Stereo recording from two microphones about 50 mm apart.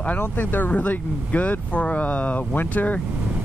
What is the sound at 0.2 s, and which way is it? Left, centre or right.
Speech, left.